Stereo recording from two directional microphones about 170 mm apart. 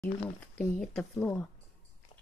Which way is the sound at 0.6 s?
5° left (ahead or behind).